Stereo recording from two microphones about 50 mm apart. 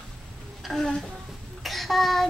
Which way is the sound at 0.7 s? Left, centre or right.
Centre.